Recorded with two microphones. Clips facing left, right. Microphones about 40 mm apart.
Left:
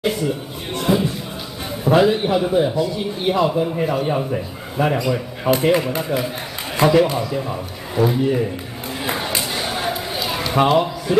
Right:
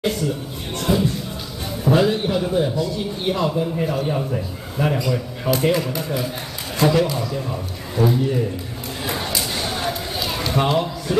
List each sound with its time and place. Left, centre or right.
0.0 s speech: centre
0.7 s music: centre
2.0 s a man's voice: centre
9.0 s a sound: left